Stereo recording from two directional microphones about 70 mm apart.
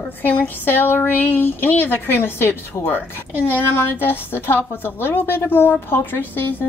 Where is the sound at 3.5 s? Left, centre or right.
Left.